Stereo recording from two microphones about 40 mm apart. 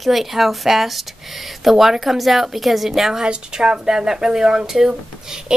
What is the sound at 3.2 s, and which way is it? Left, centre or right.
Speech, right.